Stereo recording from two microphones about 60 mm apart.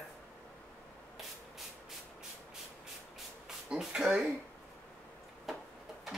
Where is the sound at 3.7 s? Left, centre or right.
Centre.